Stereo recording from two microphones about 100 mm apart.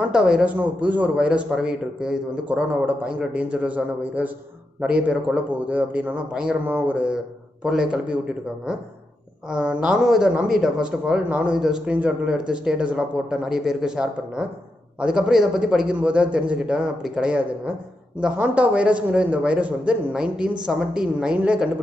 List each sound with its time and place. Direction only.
0.0 s speech: 10° right (ahead or behind)